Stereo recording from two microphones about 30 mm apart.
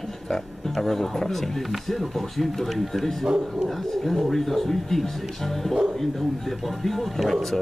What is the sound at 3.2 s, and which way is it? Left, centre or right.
Speech, centre.